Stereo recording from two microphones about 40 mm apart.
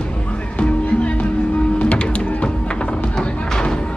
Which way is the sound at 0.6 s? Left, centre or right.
Left.